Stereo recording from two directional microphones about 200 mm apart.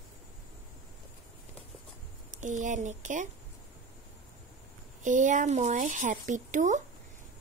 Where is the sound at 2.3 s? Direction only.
40° right (ahead or behind).